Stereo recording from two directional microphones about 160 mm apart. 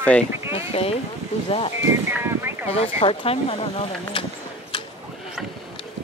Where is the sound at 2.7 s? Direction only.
40° left (ahead or behind).